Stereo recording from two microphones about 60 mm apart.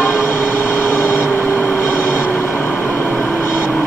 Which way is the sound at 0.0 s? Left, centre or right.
Left.